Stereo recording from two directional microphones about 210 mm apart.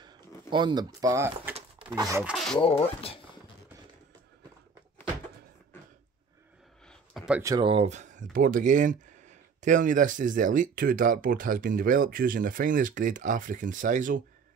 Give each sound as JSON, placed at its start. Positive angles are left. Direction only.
{"t": 0.0, "sound": "speech", "side_deg": -20}
{"t": 2.2, "sound": "speech", "side_deg": 0}
{"t": 2.6, "sound": "speech", "side_deg": 25}
{"t": 6.9, "sound": "a sound", "side_deg": -5}
{"t": 7.4, "sound": "speech", "side_deg": -20}